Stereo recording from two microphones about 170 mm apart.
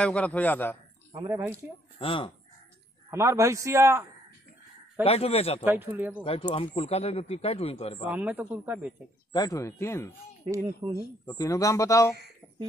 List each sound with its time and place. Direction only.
0.0 s speech: 10° left (ahead or behind)
1.1 s a man's voice: 15° right (ahead or behind)
2.0 s speech: 30° left (ahead or behind)
3.1 s a man's voice: 15° right (ahead or behind)
5.0 s speech: 35° left (ahead or behind)
5.7 s a man's voice: 10° right (ahead or behind)
6.2 s speech: 35° left (ahead or behind)
8.1 s a man's voice: 10° right (ahead or behind)
9.3 s speech: 20° left (ahead or behind)
10.8 s a man's voice: 15° right (ahead or behind)
11.2 s speech: 20° left (ahead or behind)